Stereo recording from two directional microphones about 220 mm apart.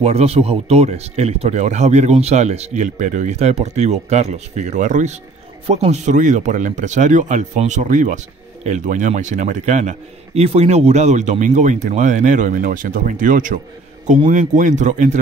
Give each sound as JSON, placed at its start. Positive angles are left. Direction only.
{"t": 0.0, "sound": "speech", "side_deg": -30}